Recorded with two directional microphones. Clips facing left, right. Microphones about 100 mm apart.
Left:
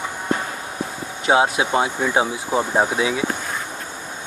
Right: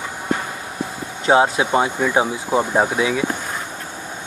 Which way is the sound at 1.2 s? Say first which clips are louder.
Right 2 dB; 15° left (ahead or behind).